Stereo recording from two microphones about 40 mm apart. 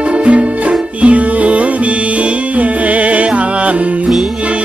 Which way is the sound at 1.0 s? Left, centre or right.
Right.